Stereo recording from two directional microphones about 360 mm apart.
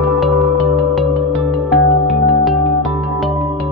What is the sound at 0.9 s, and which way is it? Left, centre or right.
Music, centre.